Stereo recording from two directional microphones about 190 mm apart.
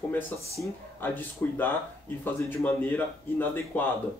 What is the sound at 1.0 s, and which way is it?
Speech, 10° left (ahead or behind).